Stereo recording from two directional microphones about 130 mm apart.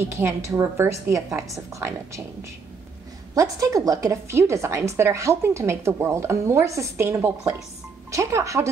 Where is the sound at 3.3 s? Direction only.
25° right (ahead or behind).